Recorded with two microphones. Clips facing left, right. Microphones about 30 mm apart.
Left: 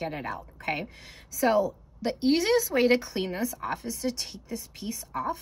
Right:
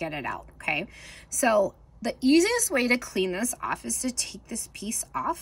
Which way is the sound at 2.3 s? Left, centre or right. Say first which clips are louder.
Right 1 dB; left.